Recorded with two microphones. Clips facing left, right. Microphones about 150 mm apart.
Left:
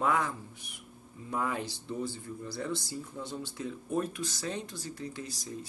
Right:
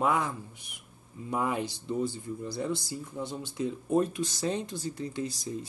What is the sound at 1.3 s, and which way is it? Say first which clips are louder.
Speech: right 3 dB; 15° right (ahead or behind).